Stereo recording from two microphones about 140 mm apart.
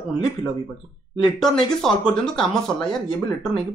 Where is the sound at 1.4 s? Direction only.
5° left (ahead or behind).